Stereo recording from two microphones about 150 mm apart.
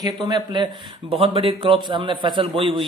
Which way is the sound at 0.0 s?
25° right (ahead or behind).